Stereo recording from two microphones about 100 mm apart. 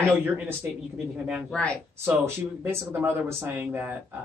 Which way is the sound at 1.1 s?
10° right (ahead or behind).